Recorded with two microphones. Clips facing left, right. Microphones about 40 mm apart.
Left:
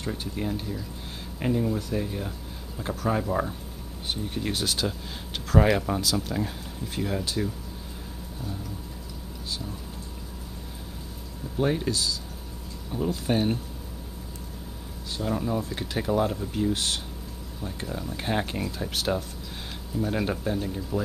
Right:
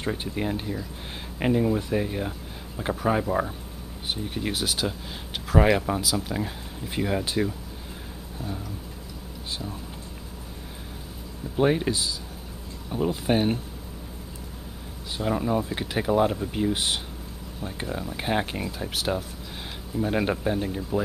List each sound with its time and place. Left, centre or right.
0.0 s speech: right
11.5 s speech: right
15.1 s speech: right
20.0 s speech: right